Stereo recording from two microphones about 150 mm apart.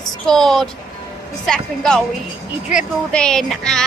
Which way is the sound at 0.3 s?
Centre (ahead or behind).